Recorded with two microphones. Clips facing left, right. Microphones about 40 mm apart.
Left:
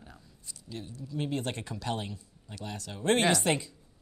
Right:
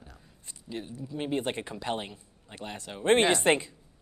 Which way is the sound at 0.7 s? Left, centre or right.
Right.